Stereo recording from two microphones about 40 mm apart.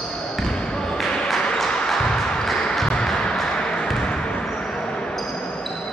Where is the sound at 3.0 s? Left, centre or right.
Centre.